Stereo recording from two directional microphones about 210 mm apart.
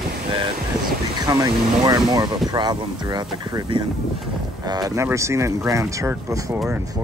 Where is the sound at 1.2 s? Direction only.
20° right (ahead or behind).